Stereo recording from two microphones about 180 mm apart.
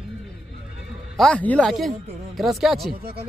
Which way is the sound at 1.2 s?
5° left (ahead or behind).